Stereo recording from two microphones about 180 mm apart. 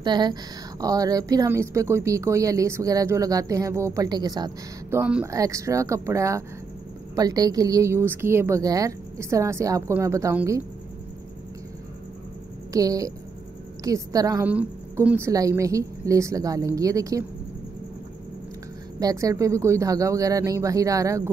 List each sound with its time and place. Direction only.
0.0 s speech: 25° right (ahead or behind)
4.9 s a woman's voice: 10° right (ahead or behind)
12.7 s speech: 20° right (ahead or behind)
14.4 s a woman's voice: 10° right (ahead or behind)
18.9 s a woman's voice: 20° right (ahead or behind)